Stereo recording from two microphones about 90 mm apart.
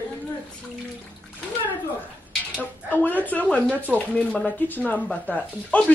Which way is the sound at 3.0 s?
20° left (ahead or behind).